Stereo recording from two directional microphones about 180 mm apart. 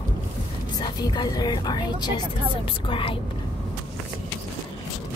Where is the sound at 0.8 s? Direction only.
25° left (ahead or behind).